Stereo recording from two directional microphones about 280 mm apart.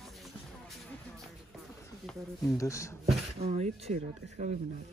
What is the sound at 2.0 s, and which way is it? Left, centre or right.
Speech, centre.